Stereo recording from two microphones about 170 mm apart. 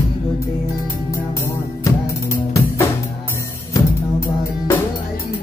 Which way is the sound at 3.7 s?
15° left (ahead or behind).